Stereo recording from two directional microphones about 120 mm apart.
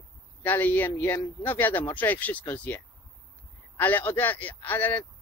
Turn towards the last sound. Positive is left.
turn(degrees=15)  # may be behind; listen again after turning